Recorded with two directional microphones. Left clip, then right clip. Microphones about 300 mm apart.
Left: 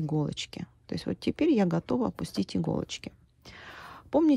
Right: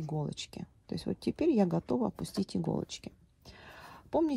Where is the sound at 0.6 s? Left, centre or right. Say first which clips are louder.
Left 4 dB; right.